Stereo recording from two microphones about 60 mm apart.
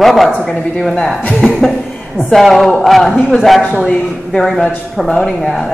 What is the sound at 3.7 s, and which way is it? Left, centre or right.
A man's voice, centre.